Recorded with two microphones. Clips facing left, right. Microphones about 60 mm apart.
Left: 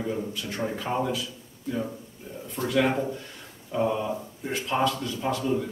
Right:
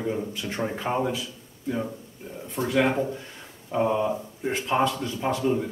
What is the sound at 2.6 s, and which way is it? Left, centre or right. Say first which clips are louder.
A man's voice: right 1 dB; right.